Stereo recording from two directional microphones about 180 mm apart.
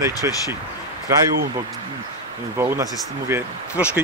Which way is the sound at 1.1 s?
15° right (ahead or behind).